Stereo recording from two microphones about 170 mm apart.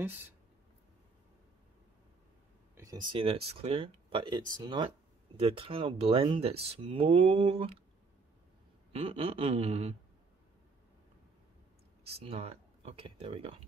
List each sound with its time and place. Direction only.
2.7 s speech: 20° right (ahead or behind)
6.5 s speech: 75° right (ahead or behind)
6.9 s speech: 30° right (ahead or behind)
8.9 s speech: 30° right (ahead or behind)
12.2 s speech: 35° right (ahead or behind)